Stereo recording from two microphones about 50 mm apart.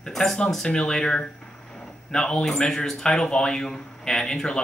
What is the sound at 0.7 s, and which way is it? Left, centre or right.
Speech, centre.